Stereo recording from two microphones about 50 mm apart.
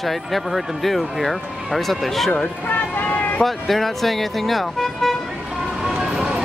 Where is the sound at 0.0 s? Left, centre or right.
Centre.